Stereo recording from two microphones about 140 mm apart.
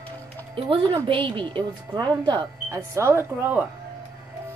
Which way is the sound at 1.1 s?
35° right (ahead or behind).